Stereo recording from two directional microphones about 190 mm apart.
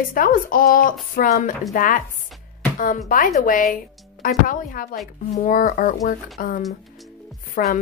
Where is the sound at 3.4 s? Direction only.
45° left (ahead or behind).